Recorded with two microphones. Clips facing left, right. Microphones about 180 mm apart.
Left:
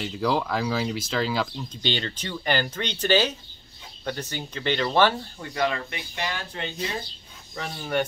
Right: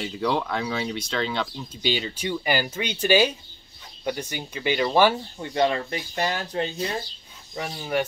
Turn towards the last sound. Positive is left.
turn(degrees=-10)  # may be behind; listen again after turning